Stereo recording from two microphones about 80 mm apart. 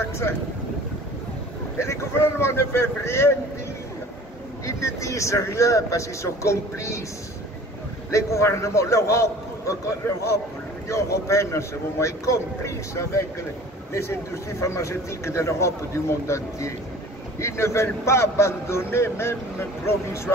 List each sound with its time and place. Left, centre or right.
1.8 s a man's voice: left
4.6 s a man's voice: left
8.1 s a man's voice: left